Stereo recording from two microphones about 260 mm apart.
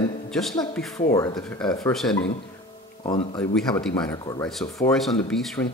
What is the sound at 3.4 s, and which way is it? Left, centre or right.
Speech, centre.